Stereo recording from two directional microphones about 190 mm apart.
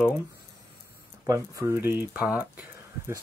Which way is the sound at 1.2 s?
15° right (ahead or behind).